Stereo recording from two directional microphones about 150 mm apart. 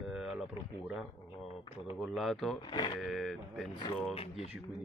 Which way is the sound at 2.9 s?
Centre (ahead or behind).